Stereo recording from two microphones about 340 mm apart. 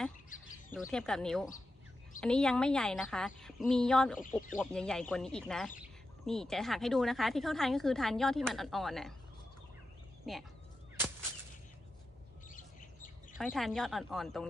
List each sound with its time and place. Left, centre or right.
0.7 s speech: centre
10.3 s speech: centre
12.4 s chirp: left
13.4 s speech: centre